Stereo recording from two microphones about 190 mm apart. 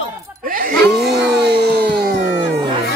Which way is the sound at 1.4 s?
60° right (ahead or behind).